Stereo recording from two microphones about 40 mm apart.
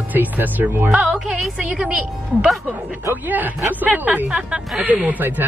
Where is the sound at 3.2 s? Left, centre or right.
Right.